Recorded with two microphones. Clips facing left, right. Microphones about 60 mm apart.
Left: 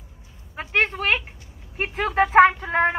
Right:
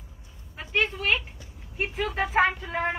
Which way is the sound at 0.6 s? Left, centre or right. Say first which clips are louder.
Left 4 dB; left.